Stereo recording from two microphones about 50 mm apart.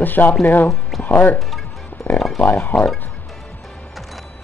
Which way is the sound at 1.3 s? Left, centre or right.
Centre.